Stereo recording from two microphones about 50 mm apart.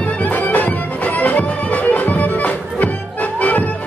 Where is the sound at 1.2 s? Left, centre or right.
Left.